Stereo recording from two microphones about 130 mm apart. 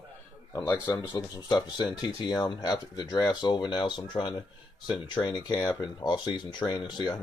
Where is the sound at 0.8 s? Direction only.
35° left (ahead or behind).